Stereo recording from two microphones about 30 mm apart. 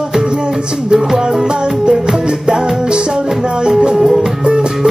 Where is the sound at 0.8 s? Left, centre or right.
Right.